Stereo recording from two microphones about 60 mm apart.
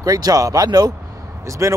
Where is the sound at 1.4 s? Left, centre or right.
Right.